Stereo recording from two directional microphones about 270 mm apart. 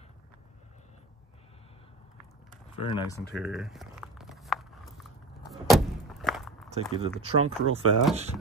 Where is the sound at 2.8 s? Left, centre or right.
Centre.